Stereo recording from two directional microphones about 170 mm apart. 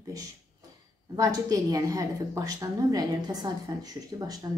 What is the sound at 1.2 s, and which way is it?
Speech, 20° right (ahead or behind).